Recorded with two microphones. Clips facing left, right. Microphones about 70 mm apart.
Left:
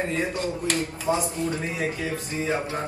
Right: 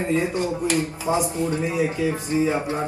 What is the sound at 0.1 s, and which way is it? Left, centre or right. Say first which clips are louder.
Speech: right 4 dB; centre.